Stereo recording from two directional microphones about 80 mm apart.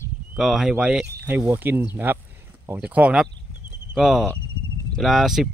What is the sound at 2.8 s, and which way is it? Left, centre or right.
Speech, centre.